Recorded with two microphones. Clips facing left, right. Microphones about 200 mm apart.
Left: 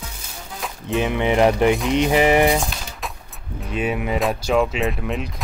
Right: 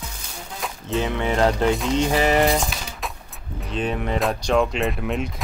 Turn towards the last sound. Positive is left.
turn(degrees=0)  # may be behind; listen again after turning